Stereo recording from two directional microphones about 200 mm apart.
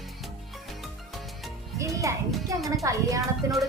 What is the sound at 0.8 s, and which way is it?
Music, centre (ahead or behind).